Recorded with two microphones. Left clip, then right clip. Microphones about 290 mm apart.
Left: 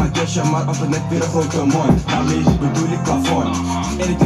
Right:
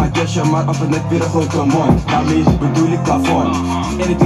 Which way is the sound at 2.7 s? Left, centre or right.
Right.